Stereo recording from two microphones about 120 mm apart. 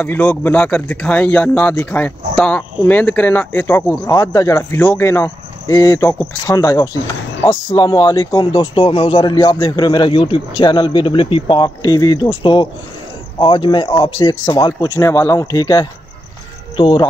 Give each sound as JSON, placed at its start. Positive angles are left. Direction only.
{"t": 0.0, "sound": "speech", "side_deg": 15}
{"t": 4.2, "sound": "a man's voice", "side_deg": 30}
{"t": 11.8, "sound": "a man's voice", "side_deg": 30}
{"t": 15.0, "sound": "speech", "side_deg": 25}
{"t": 16.7, "sound": "speech", "side_deg": 40}